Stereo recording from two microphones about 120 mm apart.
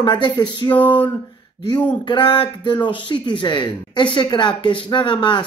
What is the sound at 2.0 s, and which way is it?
Speech, 40° left (ahead or behind).